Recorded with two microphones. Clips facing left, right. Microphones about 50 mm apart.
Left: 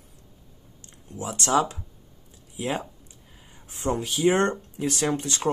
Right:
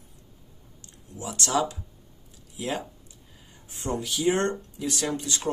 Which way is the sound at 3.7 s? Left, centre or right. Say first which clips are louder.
Left 3 dB; left.